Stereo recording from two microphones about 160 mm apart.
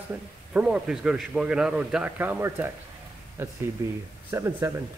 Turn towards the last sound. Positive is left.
turn(degrees=-15)  # may be behind; listen again after turning